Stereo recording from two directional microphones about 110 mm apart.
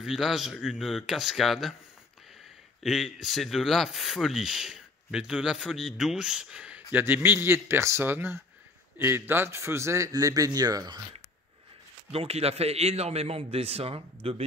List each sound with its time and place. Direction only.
0.0 s speech: centre (ahead or behind)
2.8 s a man's voice: centre (ahead or behind); by 11.0 s 35° right (ahead or behind)
12.1 s a man's voice: 65° right (ahead or behind)